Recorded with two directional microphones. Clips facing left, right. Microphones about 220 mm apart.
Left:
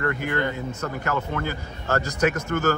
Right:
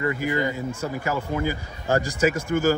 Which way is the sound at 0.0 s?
5° right (ahead or behind).